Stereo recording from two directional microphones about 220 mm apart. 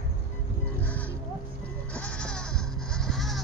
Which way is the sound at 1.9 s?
5° left (ahead or behind).